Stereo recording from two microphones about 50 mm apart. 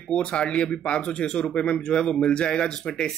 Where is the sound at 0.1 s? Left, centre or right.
Centre.